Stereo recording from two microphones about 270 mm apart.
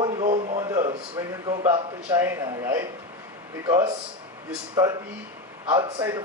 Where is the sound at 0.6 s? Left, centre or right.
Centre.